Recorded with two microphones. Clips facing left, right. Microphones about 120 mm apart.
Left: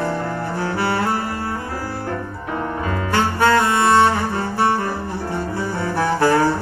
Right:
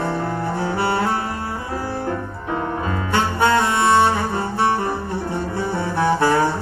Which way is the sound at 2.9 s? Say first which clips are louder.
Left 3 dB; 25° right (ahead or behind).